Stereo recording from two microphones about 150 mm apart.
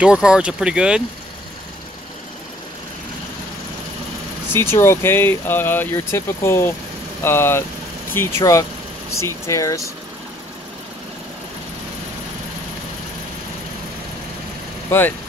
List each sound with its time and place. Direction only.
0.0 s speech: 5° right (ahead or behind)
4.5 s speech: 15° left (ahead or behind)
14.9 s speech: 15° left (ahead or behind)